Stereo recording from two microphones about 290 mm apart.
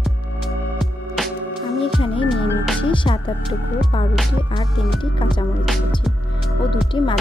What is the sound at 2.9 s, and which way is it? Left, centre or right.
Speech, centre.